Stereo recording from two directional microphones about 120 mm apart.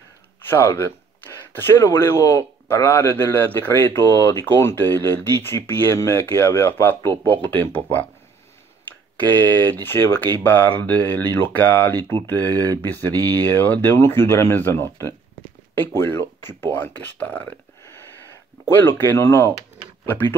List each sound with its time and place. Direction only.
0.4 s speech: 20° left (ahead or behind)
9.1 s speech: 15° left (ahead or behind)
18.9 s speech: 20° left (ahead or behind)